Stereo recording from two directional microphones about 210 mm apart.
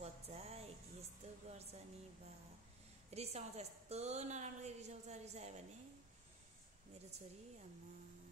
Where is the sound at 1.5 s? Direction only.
30° right (ahead or behind).